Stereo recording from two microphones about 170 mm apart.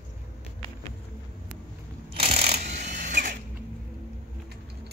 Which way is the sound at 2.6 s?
45° right (ahead or behind).